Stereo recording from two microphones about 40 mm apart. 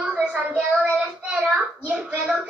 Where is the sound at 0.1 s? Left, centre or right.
Right.